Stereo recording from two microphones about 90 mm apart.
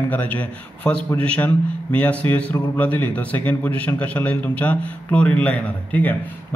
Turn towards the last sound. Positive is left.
turn(degrees=20)  # may be behind; listen again after turning